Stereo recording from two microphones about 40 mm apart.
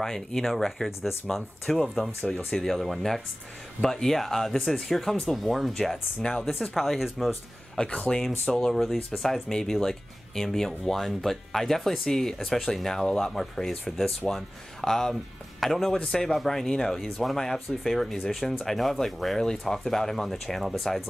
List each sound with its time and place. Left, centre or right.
0.0 s speech: centre
1.7 s speech: centre
2.3 s speech: centre
7.7 s speech: left
8.5 s speech: centre